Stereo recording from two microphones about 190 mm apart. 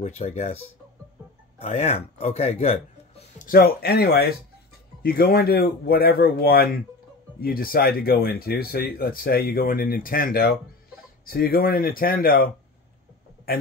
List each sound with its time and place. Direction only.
0.0 s speech: 35° left (ahead or behind)
1.6 s speech: 35° left (ahead or behind)
3.4 s speech: 55° left (ahead or behind)